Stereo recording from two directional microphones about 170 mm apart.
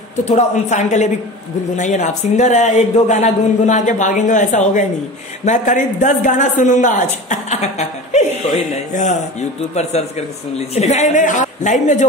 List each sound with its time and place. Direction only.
0.2 s a man's voice: 45° left (ahead or behind)